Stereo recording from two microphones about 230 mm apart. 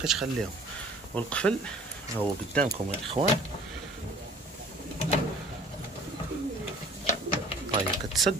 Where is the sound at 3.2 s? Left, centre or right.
Centre.